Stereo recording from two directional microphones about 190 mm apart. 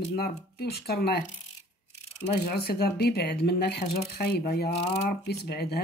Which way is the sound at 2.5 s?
55° left (ahead or behind).